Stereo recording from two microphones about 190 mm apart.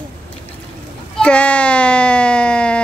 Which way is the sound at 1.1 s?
5° left (ahead or behind).